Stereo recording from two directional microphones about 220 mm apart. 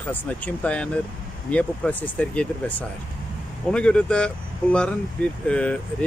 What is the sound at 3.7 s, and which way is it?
Speech, 5° left (ahead or behind).